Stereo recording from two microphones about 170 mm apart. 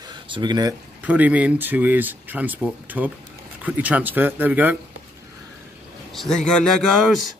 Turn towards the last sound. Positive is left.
turn(degrees=0)  # may be behind; listen again after turning